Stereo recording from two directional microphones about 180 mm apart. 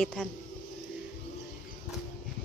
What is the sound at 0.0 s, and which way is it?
Speech, 5° left (ahead or behind).